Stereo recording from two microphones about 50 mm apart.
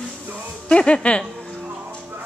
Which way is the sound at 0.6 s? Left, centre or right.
Centre.